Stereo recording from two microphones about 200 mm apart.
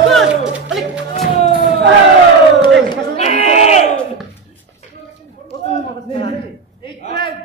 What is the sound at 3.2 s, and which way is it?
Sheep, 35° left (ahead or behind).